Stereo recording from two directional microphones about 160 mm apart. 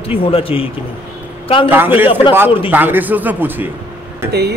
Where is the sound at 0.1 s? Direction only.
35° left (ahead or behind).